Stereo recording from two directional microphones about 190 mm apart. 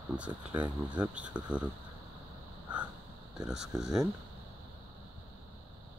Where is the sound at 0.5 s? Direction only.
25° right (ahead or behind).